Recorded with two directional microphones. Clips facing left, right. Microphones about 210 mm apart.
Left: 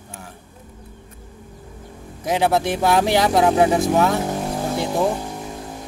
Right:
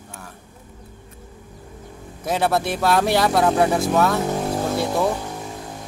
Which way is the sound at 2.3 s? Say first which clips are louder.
Left 2 dB; 15° left (ahead or behind).